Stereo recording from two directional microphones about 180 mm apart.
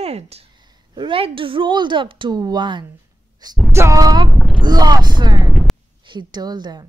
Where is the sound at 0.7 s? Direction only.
25° right (ahead or behind).